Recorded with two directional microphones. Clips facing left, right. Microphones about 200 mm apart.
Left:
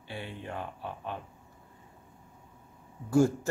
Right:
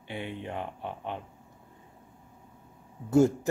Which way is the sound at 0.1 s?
20° right (ahead or behind).